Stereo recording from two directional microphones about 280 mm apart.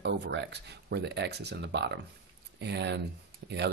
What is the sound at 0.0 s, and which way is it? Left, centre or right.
Speech, right.